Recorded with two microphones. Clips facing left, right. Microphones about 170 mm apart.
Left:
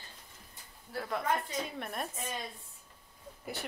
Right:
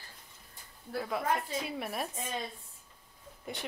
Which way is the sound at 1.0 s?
5° right (ahead or behind).